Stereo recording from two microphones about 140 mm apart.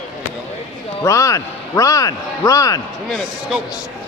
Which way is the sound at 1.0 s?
25° left (ahead or behind).